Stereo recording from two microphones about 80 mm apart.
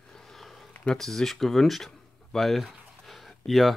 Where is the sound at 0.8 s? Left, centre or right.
Centre.